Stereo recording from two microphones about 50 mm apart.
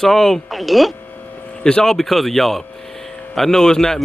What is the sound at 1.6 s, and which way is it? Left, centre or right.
Speech, centre.